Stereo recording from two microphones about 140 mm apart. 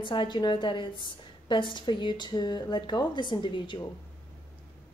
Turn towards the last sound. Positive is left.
turn(degrees=35)  # may be behind; listen again after turning